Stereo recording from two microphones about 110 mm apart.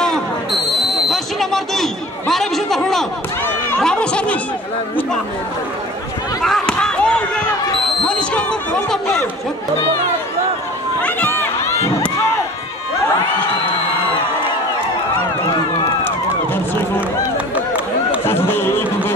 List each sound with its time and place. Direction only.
0.0 s basketball bounce: centre (ahead or behind)
3.7 s speech: 10° left (ahead or behind)
6.4 s basketball bounce: 5° left (ahead or behind)
8.0 s speech: 10° left (ahead or behind)
11.0 s run: 20° left (ahead or behind)
18.3 s a sound: 20° left (ahead or behind)